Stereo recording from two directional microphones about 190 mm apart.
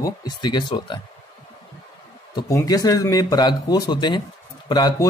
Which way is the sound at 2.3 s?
20° left (ahead or behind).